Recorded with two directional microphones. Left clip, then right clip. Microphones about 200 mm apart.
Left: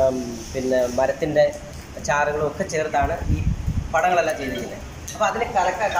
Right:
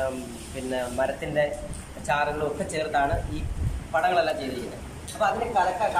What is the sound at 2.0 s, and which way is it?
Speech, 5° left (ahead or behind).